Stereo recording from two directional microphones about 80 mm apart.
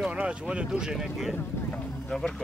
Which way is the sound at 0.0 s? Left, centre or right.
Centre.